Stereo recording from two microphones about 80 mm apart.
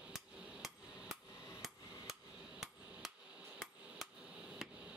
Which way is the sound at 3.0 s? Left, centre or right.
Centre.